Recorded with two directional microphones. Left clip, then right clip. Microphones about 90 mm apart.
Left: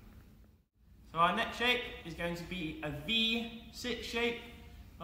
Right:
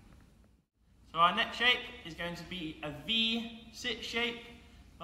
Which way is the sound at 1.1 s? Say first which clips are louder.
Right 2 dB; 30° left (ahead or behind).